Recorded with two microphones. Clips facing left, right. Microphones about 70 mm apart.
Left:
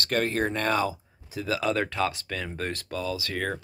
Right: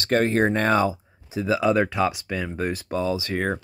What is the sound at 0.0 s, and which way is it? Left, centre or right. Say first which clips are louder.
Speech: right 6 dB; right.